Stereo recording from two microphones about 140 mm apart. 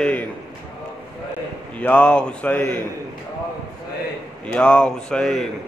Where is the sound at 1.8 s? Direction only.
5° left (ahead or behind).